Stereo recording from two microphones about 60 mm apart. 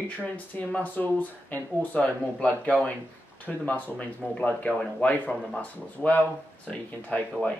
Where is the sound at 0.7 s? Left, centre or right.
Left.